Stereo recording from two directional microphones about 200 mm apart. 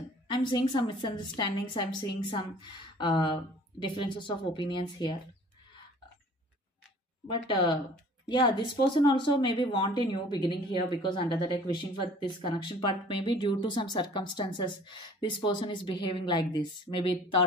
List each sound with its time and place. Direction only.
0.3 s speech: 25° left (ahead or behind)
7.2 s speech: 25° left (ahead or behind)